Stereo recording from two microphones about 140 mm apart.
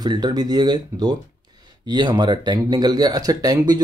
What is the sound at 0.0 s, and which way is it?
Speech, 30° right (ahead or behind).